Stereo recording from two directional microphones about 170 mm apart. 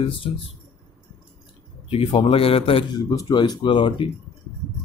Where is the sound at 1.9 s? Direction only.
30° left (ahead or behind).